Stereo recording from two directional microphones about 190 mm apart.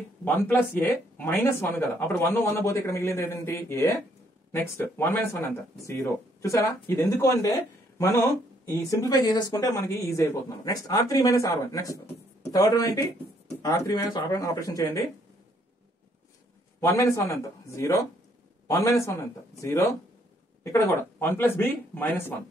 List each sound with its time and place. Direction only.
0.2 s speech: 10° left (ahead or behind)
6.4 s speech: 15° left (ahead or behind)
16.8 s speech: 15° left (ahead or behind)